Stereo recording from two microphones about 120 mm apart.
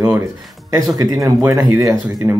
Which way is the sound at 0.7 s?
25° right (ahead or behind).